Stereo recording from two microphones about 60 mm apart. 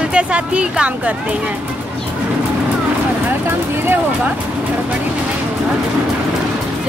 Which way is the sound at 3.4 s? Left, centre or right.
Right.